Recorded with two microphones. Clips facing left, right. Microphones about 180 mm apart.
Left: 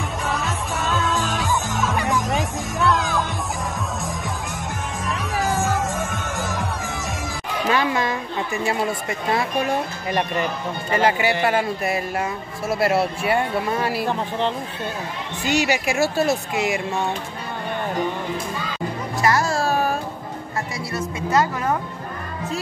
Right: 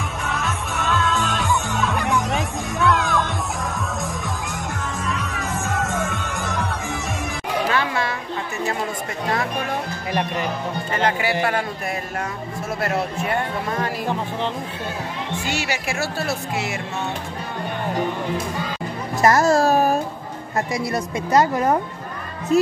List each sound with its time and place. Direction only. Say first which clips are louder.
0.4 s music: even; 15° left (ahead or behind)
1.8 s music: even; centre (ahead or behind)
5.8 s music: right 1 dB; 20° left (ahead or behind)
7.7 s children playing: left 2 dB; 20° left (ahead or behind)
9.3 s speech: left 3 dB; 10° left (ahead or behind)
10.9 s speech: left 3 dB; 5° left (ahead or behind)
15.4 s speech: left 8 dB; 20° left (ahead or behind)
19.2 s music: right 5 dB; 45° right (ahead or behind)
20.9 s a woman's voice: right 1 dB; 40° right (ahead or behind)